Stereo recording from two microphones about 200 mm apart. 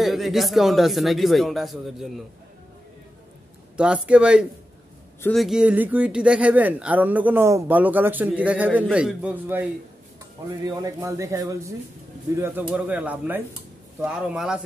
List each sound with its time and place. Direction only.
0.0 s speech: centre (ahead or behind)
3.7 s speech: 5° right (ahead or behind)